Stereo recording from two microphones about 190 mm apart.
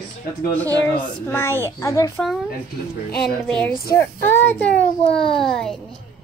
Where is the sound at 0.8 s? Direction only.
10° left (ahead or behind).